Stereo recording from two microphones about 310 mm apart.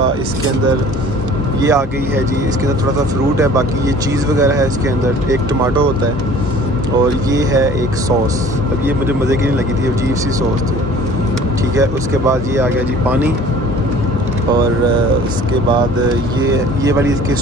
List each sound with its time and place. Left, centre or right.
1.6 s speech: centre
4.4 s speech: centre
7.3 s speech: centre
11.7 s speech: centre
16.4 s speech: centre